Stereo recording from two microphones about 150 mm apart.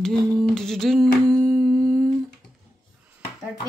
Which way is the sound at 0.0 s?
5° left (ahead or behind).